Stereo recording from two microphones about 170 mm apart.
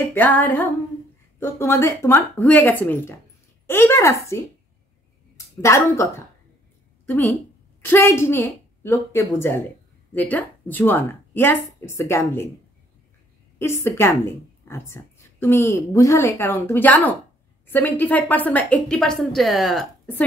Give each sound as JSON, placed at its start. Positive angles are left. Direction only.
{"t": 0.1, "sound": "a woman's voice", "side_deg": 10}
{"t": 5.6, "sound": "a woman's voice", "side_deg": 15}
{"t": 7.8, "sound": "a woman's voice", "side_deg": 15}
{"t": 13.6, "sound": "a woman's voice", "side_deg": 15}